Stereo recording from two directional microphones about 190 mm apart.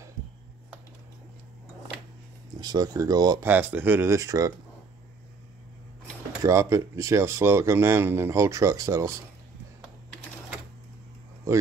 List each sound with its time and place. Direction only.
2.6 s speech: 20° right (ahead or behind)
6.4 s speech: 15° right (ahead or behind)